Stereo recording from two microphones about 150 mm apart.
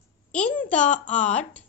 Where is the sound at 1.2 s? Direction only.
50° left (ahead or behind).